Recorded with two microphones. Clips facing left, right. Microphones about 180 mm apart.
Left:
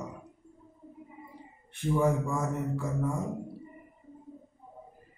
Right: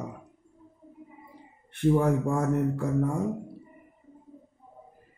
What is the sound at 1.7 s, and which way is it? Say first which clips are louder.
A man's voice: right 4 dB; 60° right (ahead or behind).